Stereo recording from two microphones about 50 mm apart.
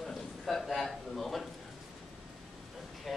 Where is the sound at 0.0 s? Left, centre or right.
Centre.